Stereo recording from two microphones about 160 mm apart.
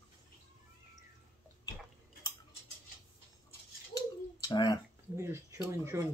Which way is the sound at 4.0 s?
25° left (ahead or behind).